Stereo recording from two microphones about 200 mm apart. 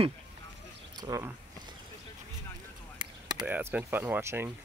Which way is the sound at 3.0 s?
20° right (ahead or behind).